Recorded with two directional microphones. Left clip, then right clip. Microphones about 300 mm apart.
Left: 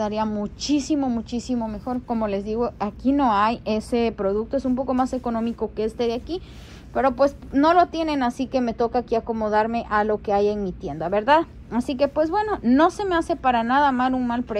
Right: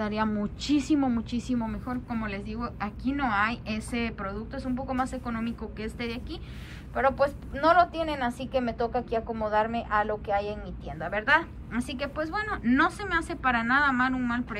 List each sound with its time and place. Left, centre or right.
0.0 s a woman's voice: centre